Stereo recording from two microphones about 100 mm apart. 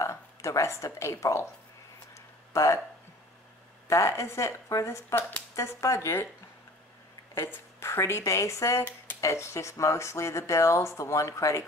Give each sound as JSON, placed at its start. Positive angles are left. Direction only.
{"t": 0.0, "sound": "a woman's voice", "side_deg": 30}
{"t": 2.1, "sound": "a sound", "side_deg": 30}
{"t": 3.8, "sound": "speech", "side_deg": 30}
{"t": 7.3, "sound": "a woman's voice", "side_deg": 25}